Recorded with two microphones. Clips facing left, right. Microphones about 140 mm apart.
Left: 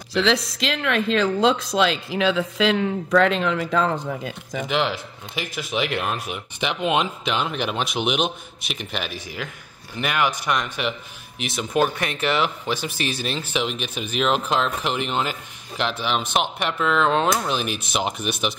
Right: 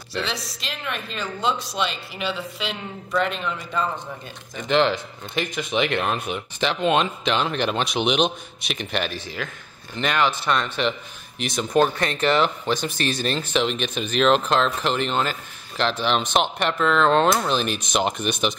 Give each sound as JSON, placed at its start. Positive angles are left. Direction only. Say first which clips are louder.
{"t": 0.2, "sound": "speech", "louder": "left 9 dB", "side_deg": 90}
{"t": 4.6, "sound": "speech", "louder": "right 5 dB", "side_deg": 5}